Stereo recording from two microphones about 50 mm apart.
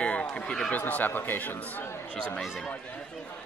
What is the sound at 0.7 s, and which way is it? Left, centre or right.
Speech, left.